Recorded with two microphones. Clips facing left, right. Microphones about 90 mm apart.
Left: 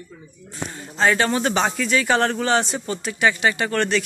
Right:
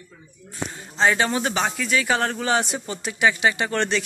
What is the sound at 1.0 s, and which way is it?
Speech, 15° right (ahead or behind).